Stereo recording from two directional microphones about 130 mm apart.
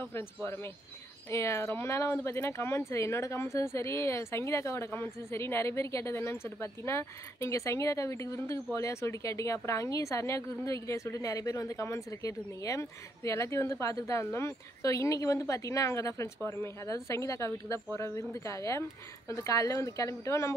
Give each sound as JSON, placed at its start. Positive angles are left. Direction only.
{"t": 0.0, "sound": "a woman's voice", "side_deg": 15}